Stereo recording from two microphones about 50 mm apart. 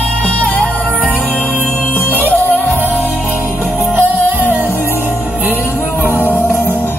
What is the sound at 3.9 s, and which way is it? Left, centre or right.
Music, right.